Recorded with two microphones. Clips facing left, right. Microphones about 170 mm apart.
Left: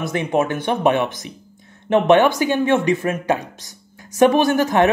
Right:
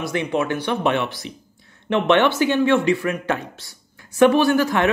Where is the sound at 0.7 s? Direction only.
15° left (ahead or behind).